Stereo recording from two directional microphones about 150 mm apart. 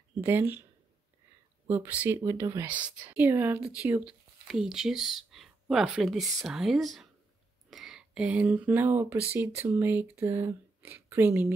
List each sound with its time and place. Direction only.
0.2 s speech: 15° right (ahead or behind)
1.7 s speech: 15° right (ahead or behind)
2.6 s speech: 10° right (ahead or behind)